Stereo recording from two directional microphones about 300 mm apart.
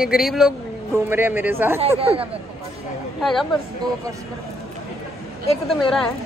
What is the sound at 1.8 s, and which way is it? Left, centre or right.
Speech, centre.